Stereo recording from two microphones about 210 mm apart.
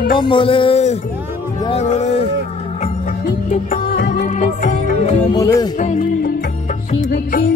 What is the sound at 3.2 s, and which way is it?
Music, 40° left (ahead or behind).